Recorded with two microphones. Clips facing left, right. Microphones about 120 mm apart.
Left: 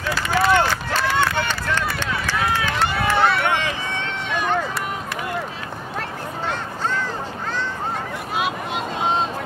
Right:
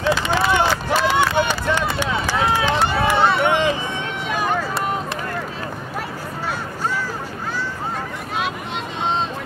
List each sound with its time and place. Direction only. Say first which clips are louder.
0.0 s run: right 2 dB; 25° right (ahead or behind)